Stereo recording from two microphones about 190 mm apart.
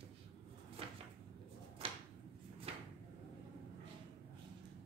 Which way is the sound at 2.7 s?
30° right (ahead or behind).